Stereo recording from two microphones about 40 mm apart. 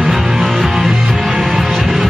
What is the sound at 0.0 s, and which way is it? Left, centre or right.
Music, centre.